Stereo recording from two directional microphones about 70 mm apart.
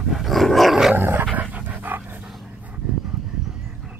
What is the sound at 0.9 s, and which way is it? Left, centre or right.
Dog, right.